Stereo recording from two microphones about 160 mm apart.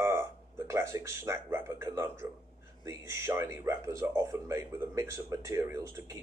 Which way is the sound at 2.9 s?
15° right (ahead or behind).